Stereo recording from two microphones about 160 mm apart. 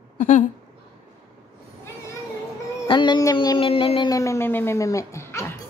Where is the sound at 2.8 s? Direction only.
30° left (ahead or behind).